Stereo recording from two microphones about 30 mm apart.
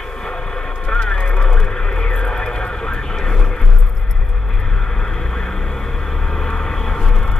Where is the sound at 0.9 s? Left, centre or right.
Left.